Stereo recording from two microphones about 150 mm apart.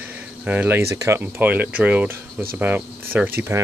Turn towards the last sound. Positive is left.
turn(degrees=-15)  # may be behind; listen again after turning